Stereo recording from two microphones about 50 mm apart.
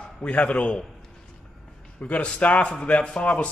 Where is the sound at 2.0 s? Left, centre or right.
Left.